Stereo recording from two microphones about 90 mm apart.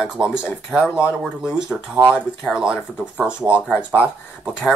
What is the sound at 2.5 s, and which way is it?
Speech, 10° right (ahead or behind).